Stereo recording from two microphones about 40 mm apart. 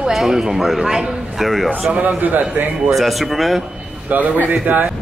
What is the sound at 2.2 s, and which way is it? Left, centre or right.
Speech, right.